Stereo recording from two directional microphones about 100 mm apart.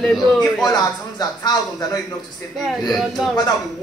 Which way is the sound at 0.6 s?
40° left (ahead or behind).